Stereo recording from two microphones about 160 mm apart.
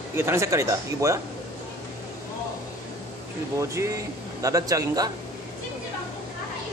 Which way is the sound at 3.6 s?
20° right (ahead or behind).